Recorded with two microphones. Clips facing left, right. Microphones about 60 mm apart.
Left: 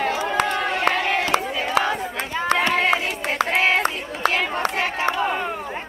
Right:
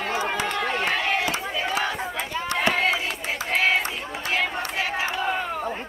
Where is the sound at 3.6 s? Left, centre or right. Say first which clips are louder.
Even; left.